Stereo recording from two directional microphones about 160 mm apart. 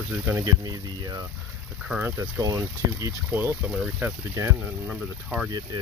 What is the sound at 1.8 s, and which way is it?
Speech, 5° right (ahead or behind).